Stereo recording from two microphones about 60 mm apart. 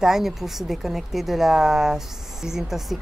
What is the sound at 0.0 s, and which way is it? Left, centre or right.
Speech, centre.